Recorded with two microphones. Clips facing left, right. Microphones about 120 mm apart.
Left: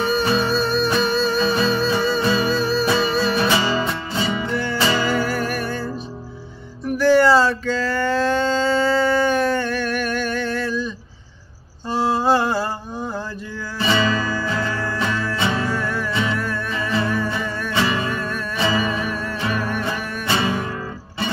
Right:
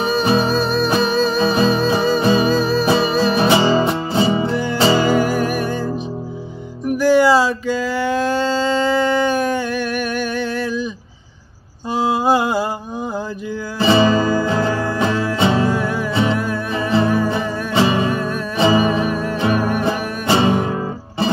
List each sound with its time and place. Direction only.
0.0 s music: 15° right (ahead or behind)
5.1 s music: 15° right (ahead or behind)
6.9 s a sound: 10° right (ahead or behind)
11.9 s mantra: 15° right (ahead or behind)
13.7 s music: 25° right (ahead or behind)